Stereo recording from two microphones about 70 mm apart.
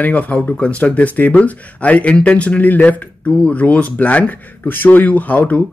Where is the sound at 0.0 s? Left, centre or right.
Left.